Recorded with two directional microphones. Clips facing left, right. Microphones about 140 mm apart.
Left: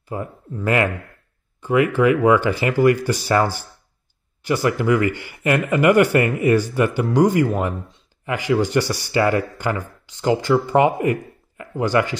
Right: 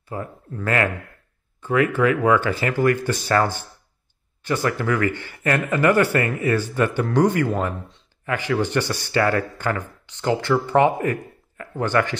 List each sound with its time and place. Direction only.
0.1 s speech: 15° left (ahead or behind)